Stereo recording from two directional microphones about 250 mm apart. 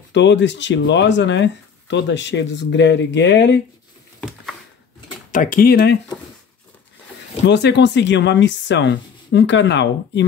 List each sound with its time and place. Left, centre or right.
0.1 s speech: left
4.2 s a sound: centre
5.3 s speech: left
7.4 s speech: left